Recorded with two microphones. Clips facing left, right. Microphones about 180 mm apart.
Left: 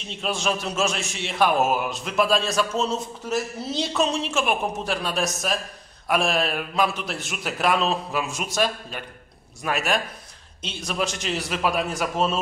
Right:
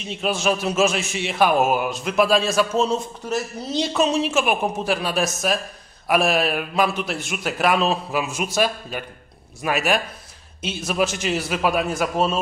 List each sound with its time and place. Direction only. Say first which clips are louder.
0.1 s a man's voice: right 4 dB; 5° right (ahead or behind)